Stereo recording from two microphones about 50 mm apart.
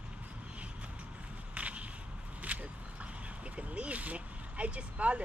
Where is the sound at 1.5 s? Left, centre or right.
Right.